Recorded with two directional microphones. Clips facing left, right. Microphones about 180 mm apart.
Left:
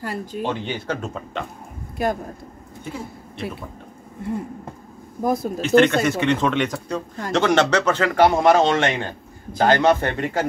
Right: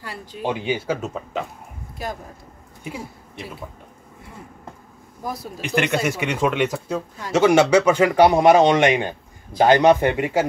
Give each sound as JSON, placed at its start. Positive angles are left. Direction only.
{"t": 0.0, "sound": "speech", "side_deg": 45}
{"t": 0.4, "sound": "speech", "side_deg": -10}
{"t": 5.2, "sound": "speech", "side_deg": 50}
{"t": 5.6, "sound": "speech", "side_deg": -15}